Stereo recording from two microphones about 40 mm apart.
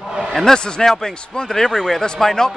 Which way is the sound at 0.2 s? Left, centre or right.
Centre.